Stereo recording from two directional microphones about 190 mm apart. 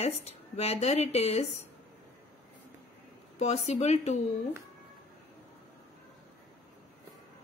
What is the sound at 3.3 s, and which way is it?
Speech, 35° left (ahead or behind).